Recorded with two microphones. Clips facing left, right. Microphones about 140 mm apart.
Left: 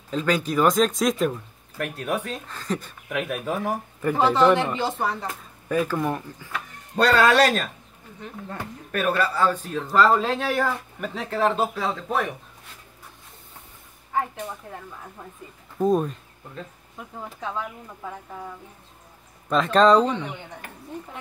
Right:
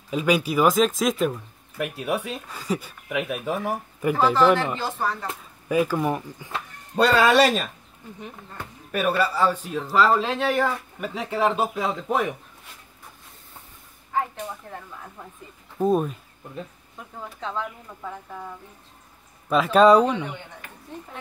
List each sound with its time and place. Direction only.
0.1 s speech: 10° right (ahead or behind)
4.2 s speech: 20° left (ahead or behind)
5.7 s speech: 10° right (ahead or behind)
8.9 s speech: 5° right (ahead or behind)
15.8 s speech: 5° right (ahead or behind)
17.4 s speech: 10° left (ahead or behind)
19.5 s speech: 5° right (ahead or behind)